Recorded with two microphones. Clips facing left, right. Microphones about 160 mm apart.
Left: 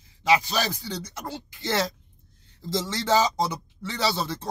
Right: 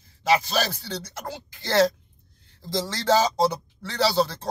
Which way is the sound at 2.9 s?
20° left (ahead or behind).